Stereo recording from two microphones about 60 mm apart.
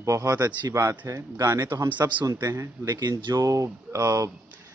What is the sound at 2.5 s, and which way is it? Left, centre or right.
Speech, right.